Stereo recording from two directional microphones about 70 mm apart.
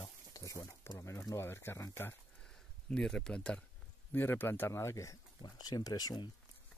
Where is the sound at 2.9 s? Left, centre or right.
Centre.